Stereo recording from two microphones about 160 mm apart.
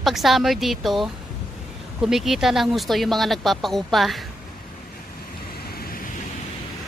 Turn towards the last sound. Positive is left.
turn(degrees=70)  # may be behind; listen again after turning